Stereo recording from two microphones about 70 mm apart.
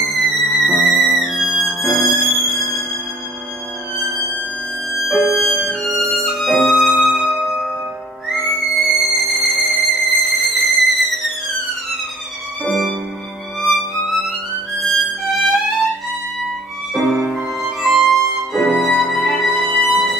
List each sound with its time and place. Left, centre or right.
0.1 s music: centre
5.7 s violin: centre
6.7 s music: right
7.1 s music: centre
12.6 s music: centre
13.6 s music: centre
17.0 s music: centre